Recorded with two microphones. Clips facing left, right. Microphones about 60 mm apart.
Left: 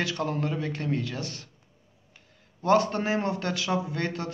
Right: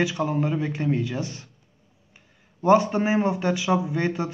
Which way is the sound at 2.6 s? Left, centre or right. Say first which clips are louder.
Right 4 dB; centre.